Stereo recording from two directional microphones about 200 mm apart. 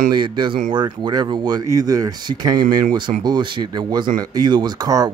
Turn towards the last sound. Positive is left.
turn(degrees=-20)  # may be behind; listen again after turning